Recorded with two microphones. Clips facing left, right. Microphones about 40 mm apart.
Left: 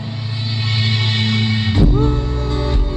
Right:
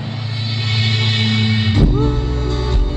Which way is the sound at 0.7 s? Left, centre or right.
Centre.